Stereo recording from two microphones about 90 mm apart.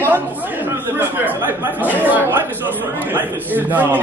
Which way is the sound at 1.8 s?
20° right (ahead or behind).